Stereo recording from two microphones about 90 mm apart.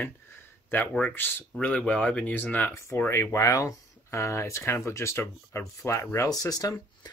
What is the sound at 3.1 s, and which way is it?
Speech, 35° left (ahead or behind).